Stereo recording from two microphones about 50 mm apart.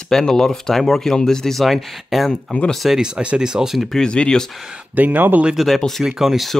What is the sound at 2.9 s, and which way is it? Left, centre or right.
Speech, centre.